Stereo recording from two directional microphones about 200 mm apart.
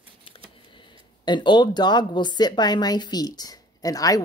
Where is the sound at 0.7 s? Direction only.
25° left (ahead or behind).